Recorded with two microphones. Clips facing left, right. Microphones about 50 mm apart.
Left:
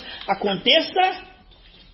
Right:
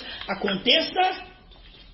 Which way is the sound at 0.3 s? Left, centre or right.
Left.